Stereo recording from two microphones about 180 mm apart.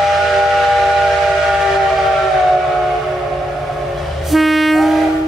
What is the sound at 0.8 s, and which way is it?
Steam whistle, centre (ahead or behind).